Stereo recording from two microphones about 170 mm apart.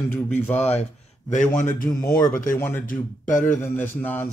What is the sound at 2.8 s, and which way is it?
Speech, 50° left (ahead or behind).